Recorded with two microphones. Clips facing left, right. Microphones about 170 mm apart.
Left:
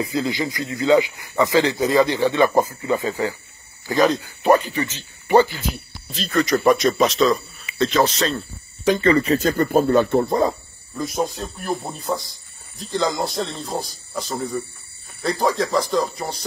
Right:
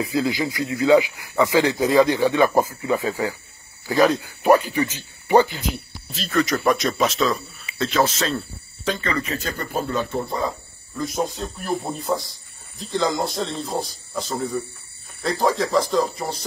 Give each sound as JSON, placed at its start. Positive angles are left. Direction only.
{"t": 0.0, "sound": "speech", "side_deg": -5}
{"t": 6.1, "sound": "speech", "side_deg": 0}
{"t": 9.0, "sound": "speech", "side_deg": 35}
{"t": 11.0, "sound": "speech", "side_deg": 0}
{"t": 12.9, "sound": "speech", "side_deg": 0}